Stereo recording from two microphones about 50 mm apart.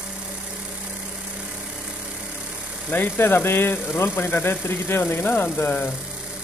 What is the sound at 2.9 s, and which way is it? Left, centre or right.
Speech, left.